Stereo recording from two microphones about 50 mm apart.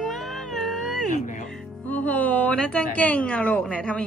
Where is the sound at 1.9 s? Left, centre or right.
Left.